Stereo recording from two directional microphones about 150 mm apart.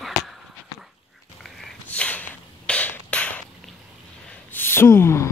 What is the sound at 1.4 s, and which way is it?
Snort, 10° left (ahead or behind).